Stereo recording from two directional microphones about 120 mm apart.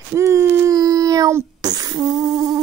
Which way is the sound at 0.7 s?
35° right (ahead or behind).